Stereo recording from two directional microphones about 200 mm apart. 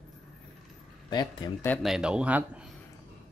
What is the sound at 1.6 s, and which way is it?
Speech, 5° left (ahead or behind).